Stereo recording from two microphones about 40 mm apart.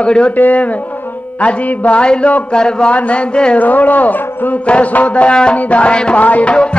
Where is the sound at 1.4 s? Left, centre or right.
Left.